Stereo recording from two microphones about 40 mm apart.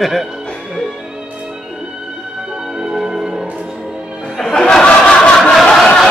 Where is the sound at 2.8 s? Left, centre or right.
Centre.